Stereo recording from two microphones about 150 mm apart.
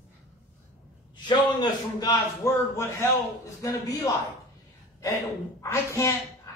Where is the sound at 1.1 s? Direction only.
30° left (ahead or behind).